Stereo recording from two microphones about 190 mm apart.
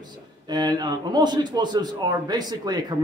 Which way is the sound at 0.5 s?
20° right (ahead or behind).